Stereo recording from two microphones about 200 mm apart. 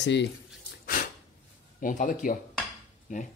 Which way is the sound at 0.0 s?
60° left (ahead or behind).